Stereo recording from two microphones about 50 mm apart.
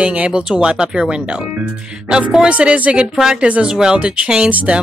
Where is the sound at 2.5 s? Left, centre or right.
Right.